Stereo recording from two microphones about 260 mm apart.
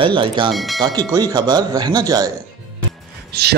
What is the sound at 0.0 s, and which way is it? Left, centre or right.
Speech, centre.